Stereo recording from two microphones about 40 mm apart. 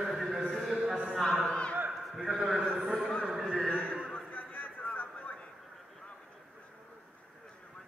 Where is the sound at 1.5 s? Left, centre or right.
Left.